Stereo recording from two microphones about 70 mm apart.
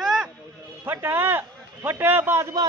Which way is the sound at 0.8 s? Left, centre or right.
Right.